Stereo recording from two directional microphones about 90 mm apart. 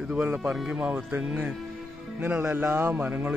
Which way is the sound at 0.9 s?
20° right (ahead or behind).